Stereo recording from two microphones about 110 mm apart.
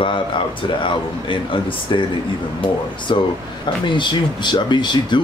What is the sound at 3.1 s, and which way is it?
Speech, 50° left (ahead or behind).